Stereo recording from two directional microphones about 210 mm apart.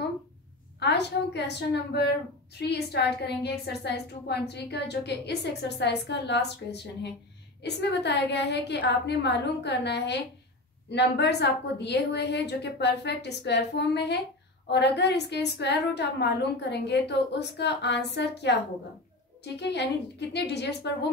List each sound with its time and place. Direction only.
0.7 s a woman's voice: 55° left (ahead or behind)